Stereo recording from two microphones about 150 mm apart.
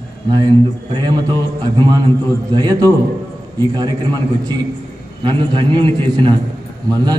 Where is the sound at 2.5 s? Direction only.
25° right (ahead or behind).